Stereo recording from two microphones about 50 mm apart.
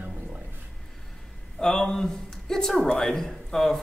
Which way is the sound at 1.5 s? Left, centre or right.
Centre.